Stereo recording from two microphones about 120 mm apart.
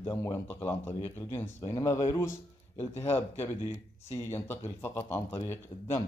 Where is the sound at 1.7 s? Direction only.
25° left (ahead or behind).